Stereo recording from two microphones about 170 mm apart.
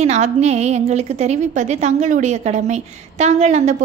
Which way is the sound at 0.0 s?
40° right (ahead or behind).